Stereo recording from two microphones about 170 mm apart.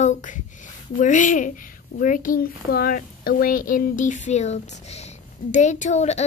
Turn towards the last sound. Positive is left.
turn(degrees=40)  # may be behind; listen again after turning